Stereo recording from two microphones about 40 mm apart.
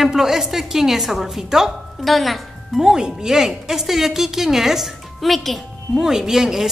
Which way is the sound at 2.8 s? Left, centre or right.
Centre.